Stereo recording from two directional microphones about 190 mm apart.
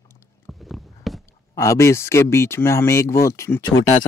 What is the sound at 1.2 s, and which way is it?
Speech, 15° left (ahead or behind).